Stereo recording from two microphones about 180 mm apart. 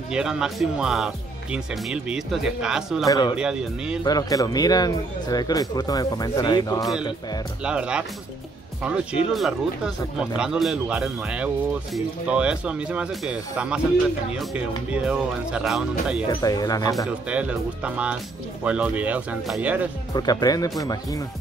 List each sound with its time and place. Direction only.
0.1 s speech: 5° right (ahead or behind)
3.1 s speech: 20° left (ahead or behind)
3.3 s speech: 5° right (ahead or behind)
4.0 s speech: 20° left (ahead or behind)
7.6 s speech: 5° right (ahead or behind)
9.3 s speech: centre (ahead or behind)
16.3 s speech: 20° left (ahead or behind)
17.3 s speech: 5° right (ahead or behind)
20.2 s speech: 20° left (ahead or behind)